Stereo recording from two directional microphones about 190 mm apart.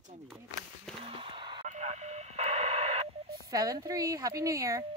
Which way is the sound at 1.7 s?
35° right (ahead or behind).